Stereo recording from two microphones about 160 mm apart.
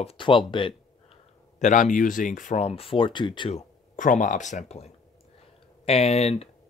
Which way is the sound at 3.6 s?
55° left (ahead or behind).